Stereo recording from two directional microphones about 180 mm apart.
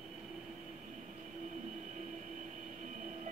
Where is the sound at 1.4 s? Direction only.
45° right (ahead or behind).